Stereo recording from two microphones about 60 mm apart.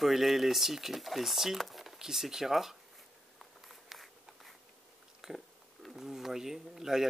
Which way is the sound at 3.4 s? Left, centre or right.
Centre.